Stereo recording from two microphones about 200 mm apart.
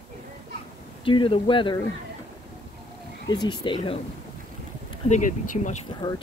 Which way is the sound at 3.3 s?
20° left (ahead or behind).